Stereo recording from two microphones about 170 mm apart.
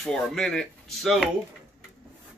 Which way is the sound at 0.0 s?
5° left (ahead or behind).